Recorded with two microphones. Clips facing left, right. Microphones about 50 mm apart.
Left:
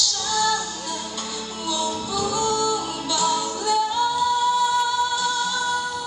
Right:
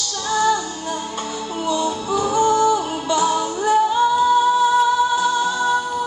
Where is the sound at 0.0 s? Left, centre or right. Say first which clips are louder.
Right 4 dB; right.